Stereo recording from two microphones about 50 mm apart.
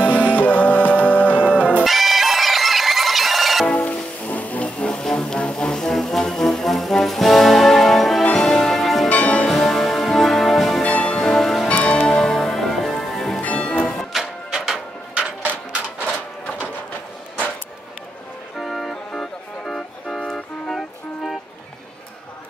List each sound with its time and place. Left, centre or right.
0.0 s music: right
0.3 s music: left
1.2 s music: right
1.9 s music: centre
3.7 s music: left; by 9.1 s centre
9.1 s music: left
9.5 s music: centre
10.8 s music: left
11.1 s music: centre
11.7 s music: left; by 13.4 s centre
13.4 s music: left
14.1 s music: centre
16.4 s a sound: left
18.6 s organ: centre